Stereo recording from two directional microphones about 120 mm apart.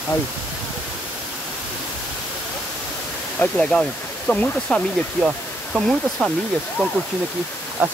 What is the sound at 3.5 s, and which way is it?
Speech, 5° left (ahead or behind).